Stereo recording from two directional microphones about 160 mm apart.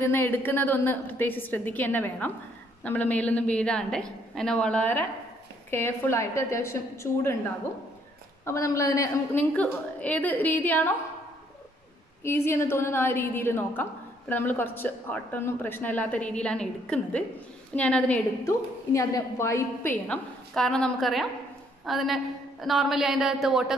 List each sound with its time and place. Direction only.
0.0 s a woman's voice: 15° left (ahead or behind)
8.5 s a woman's voice: 20° left (ahead or behind)
12.2 s a woman's voice: 15° left (ahead or behind)
18.4 s a woman's voice: 20° left (ahead or behind); by 23.8 s centre (ahead or behind)